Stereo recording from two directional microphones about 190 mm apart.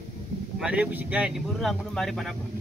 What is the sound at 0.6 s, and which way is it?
Speech, 5° right (ahead or behind).